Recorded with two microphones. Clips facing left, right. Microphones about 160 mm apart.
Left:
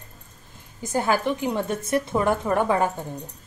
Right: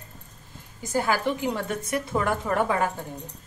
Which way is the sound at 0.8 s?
20° left (ahead or behind).